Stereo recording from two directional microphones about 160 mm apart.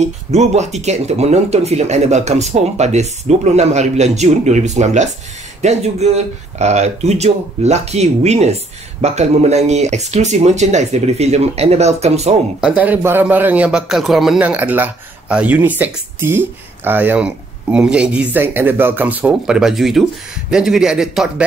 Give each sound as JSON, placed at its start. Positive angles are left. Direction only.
{"t": 0.0, "sound": "speech", "side_deg": -45}
{"t": 12.5, "sound": "a man's voice", "side_deg": -5}